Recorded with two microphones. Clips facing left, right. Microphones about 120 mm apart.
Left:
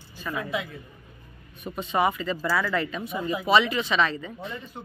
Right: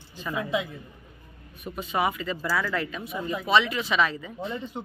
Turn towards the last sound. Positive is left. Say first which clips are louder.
# right 4 dB
turn(degrees=-25)  # may be behind; listen again after turning